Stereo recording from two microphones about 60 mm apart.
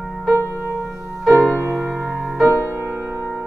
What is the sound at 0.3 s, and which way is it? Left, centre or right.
Music, right.